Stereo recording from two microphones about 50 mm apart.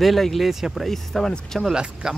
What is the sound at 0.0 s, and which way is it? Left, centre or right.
Speech, centre.